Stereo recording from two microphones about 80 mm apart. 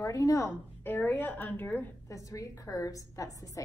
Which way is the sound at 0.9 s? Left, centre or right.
Left.